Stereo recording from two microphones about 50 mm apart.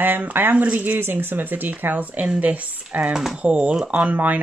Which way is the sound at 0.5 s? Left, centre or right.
Right.